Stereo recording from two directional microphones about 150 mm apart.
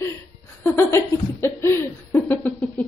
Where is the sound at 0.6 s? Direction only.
15° left (ahead or behind).